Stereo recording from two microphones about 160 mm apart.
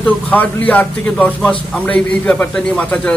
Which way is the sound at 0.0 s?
10° left (ahead or behind).